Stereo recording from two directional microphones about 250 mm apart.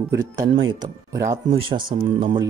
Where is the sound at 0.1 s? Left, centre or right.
Centre.